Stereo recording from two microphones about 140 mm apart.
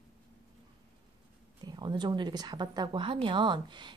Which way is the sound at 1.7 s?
30° right (ahead or behind).